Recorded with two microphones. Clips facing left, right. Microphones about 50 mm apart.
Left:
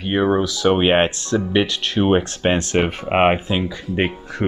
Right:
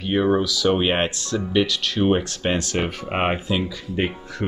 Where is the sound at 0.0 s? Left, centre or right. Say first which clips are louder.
Left 2 dB; left.